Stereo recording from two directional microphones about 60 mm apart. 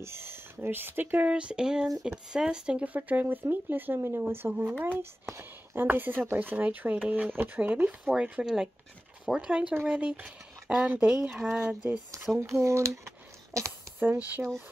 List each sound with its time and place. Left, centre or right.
0.0 s speech: right; by 2.9 s centre
2.9 s a woman's voice: right
12.4 s speech: right
13.9 s speech: right